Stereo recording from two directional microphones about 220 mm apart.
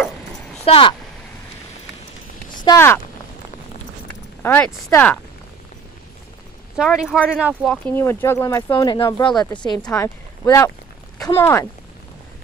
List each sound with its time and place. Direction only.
0.7 s speech: 25° left (ahead or behind)
2.6 s speech: 10° left (ahead or behind)
4.4 s speech: 10° left (ahead or behind)
6.8 s speech: centre (ahead or behind); by 9.3 s 20° left (ahead or behind)
9.8 s speech: 10° left (ahead or behind)